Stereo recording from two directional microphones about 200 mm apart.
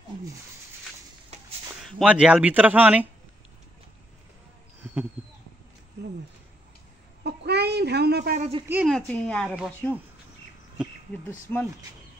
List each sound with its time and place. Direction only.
1.8 s speech: centre (ahead or behind)
7.2 s a sound: 55° right (ahead or behind)
8.4 s speech: 30° right (ahead or behind)
8.6 s speech: 10° right (ahead or behind)
8.9 s speech: 5° left (ahead or behind)